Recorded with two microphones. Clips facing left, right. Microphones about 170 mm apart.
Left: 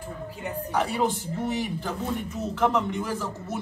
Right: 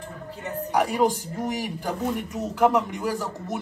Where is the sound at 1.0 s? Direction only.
40° right (ahead or behind).